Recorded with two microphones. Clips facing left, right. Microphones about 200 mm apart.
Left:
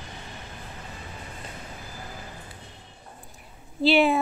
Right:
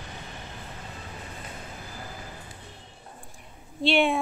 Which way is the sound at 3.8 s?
Centre (ahead or behind).